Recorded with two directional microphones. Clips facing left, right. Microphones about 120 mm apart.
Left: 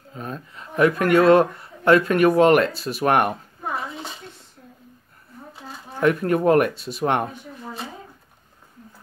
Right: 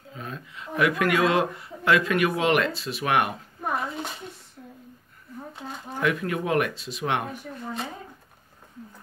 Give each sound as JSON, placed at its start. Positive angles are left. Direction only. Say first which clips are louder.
{"t": 0.1, "sound": "speech", "louder": "left 4 dB", "side_deg": 40}
{"t": 3.7, "sound": "a sound", "louder": "right 1 dB", "side_deg": 0}
{"t": 5.6, "sound": "shuffling cards", "louder": "right 1 dB", "side_deg": 0}
{"t": 5.9, "sound": "speech", "louder": "left 7 dB", "side_deg": 45}
{"t": 7.5, "sound": "speech", "louder": "right 1 dB", "side_deg": 0}